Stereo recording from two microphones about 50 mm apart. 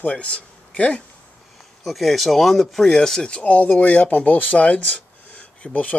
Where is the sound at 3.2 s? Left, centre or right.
Left.